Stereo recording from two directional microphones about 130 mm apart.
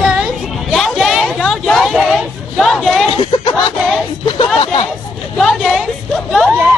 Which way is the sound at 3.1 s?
45° left (ahead or behind).